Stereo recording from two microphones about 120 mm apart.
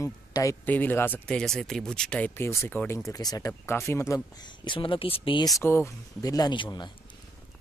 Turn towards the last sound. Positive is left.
turn(degrees=40)  # may be behind; listen again after turning